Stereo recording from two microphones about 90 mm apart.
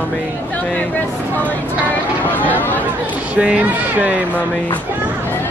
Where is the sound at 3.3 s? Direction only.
15° right (ahead or behind).